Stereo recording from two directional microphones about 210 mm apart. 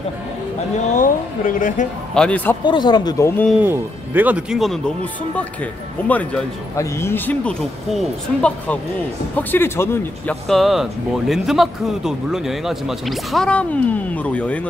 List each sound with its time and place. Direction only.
0.7 s speech: 40° left (ahead or behind)
2.1 s speech: 5° left (ahead or behind)
2.6 s speech: 20° left (ahead or behind)
3.5 s speech: 10° right (ahead or behind); by 14.7 s 5° left (ahead or behind)